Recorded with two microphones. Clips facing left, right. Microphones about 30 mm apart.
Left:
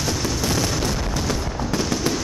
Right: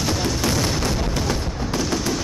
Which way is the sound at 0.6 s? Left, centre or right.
Right.